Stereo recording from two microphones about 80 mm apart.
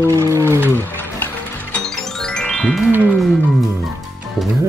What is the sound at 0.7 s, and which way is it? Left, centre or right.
Music, left.